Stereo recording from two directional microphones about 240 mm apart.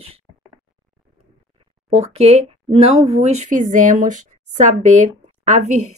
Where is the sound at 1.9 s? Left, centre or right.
Right.